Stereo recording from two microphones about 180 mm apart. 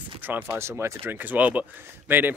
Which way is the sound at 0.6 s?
15° right (ahead or behind).